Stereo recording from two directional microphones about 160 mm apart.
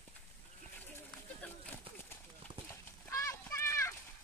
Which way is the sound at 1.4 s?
10° left (ahead or behind).